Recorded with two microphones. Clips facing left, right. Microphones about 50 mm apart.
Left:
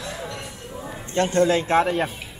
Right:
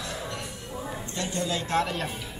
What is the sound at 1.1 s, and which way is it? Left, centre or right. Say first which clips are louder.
Speech: left 12 dB; left.